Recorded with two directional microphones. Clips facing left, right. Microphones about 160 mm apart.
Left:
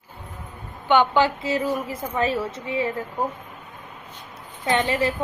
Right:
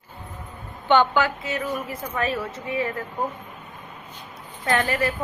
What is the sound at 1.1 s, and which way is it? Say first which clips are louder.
A woman's voice: left 3 dB; 30° left (ahead or behind).